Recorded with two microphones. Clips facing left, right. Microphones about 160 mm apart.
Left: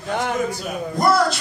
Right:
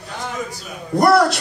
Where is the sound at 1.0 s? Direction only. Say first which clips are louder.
Right 4 dB; 70° right (ahead or behind).